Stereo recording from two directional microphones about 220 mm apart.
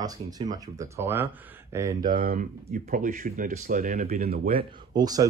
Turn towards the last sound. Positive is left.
turn(degrees=-15)  # may be behind; listen again after turning